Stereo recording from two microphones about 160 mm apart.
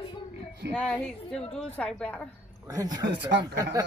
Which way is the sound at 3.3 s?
90° right.